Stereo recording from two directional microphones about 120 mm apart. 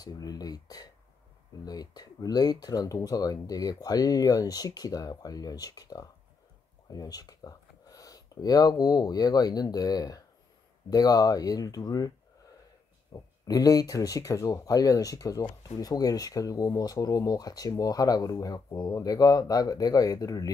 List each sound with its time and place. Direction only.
0.0 s speech: 30° left (ahead or behind)
13.1 s speech: 30° left (ahead or behind)